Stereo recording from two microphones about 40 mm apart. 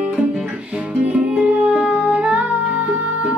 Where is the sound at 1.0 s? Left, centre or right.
Right.